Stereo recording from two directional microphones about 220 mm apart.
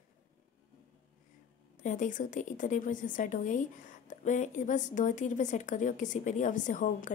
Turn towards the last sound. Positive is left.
turn(degrees=35)  # may be behind; listen again after turning